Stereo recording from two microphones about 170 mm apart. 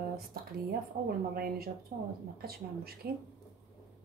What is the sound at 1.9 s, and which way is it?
Speech, 45° right (ahead or behind).